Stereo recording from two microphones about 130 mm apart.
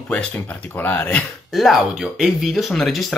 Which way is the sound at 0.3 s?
15° left (ahead or behind).